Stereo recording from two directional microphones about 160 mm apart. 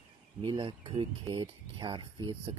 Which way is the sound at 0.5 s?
30° right (ahead or behind).